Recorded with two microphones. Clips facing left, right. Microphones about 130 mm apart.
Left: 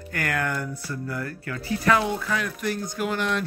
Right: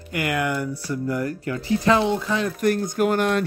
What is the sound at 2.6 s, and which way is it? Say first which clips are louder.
Speech: right 7 dB; 50° right (ahead or behind).